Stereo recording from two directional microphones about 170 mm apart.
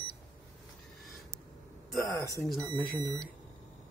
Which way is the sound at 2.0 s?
20° right (ahead or behind).